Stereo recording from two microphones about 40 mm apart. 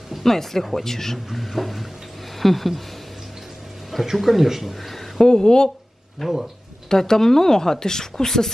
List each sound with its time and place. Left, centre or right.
0.1 s speech: centre
3.9 s speech: centre
5.3 s speech: centre
6.2 s speech: centre
6.9 s speech: centre